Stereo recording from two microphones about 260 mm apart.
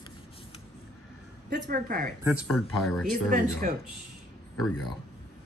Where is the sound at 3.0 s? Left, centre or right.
Right.